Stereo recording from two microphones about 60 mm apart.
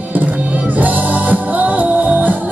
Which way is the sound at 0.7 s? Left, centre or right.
Right.